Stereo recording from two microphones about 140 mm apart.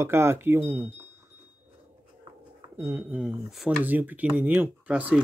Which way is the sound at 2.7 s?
20° right (ahead or behind).